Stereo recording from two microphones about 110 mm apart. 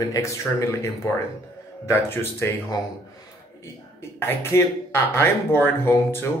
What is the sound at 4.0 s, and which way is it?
Speech, 20° left (ahead or behind).